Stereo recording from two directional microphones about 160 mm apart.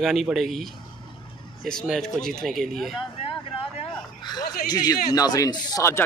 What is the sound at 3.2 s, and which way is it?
Vehicle, 35° left (ahead or behind).